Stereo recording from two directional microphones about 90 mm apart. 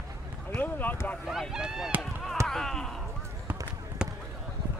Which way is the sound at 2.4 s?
5° left (ahead or behind).